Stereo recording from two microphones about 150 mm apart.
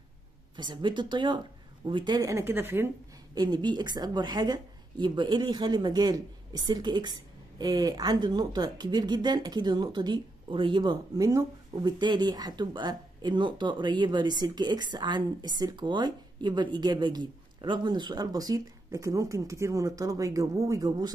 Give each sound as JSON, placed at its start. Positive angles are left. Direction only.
{"t": 0.6, "sound": "speech", "side_deg": -30}
{"t": 3.3, "sound": "speech", "side_deg": -30}